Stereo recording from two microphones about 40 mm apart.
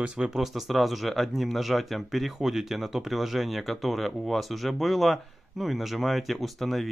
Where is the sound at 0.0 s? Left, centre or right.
Right.